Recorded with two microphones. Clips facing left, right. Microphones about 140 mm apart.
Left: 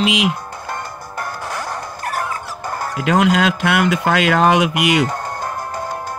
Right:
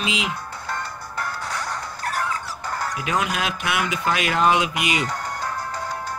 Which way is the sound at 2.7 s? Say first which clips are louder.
Left 3 dB; 25° left (ahead or behind).